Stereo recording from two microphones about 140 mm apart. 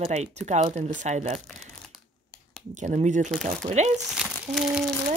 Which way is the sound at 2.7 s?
55° right (ahead or behind).